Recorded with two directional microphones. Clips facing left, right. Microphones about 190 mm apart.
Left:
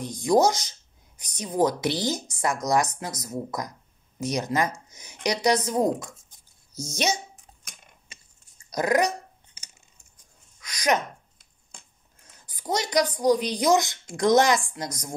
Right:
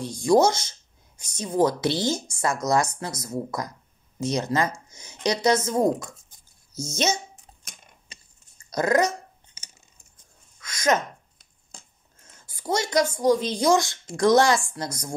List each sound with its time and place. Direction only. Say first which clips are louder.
0.0 s speech: right 2 dB; 20° left (ahead or behind)
8.1 s chewing: right 2 dB; 30° right (ahead or behind)
8.6 s dog: right 1 dB; 15° left (ahead or behind)
10.6 s speech: right 1 dB; 15° left (ahead or behind)
12.2 s a woman's voice: right 2 dB; 15° left (ahead or behind)